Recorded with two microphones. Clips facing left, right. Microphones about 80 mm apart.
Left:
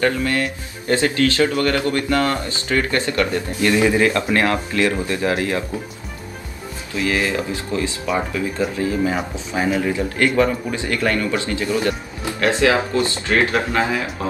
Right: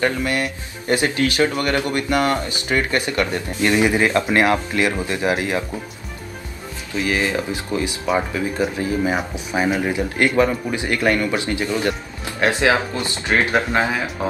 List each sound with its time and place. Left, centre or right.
0.0 s speech: right
7.1 s speech: right